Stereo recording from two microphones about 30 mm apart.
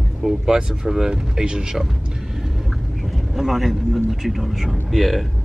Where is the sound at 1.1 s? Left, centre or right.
Right.